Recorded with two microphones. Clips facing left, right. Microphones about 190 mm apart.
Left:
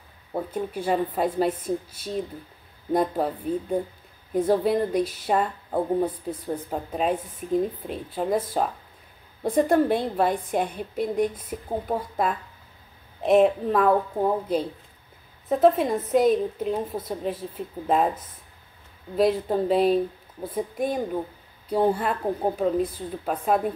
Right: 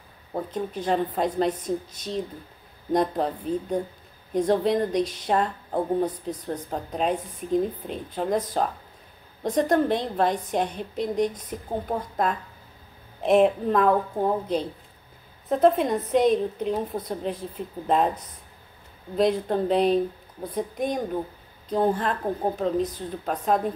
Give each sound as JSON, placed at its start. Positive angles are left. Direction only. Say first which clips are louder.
{"t": 0.3, "sound": "a woman's voice", "louder": "left 1 dB", "side_deg": 10}
{"t": 19.1, "sound": "a woman's voice", "louder": "left 1 dB", "side_deg": 5}